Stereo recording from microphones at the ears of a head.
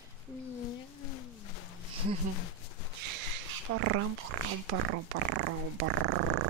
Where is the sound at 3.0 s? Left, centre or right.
Right.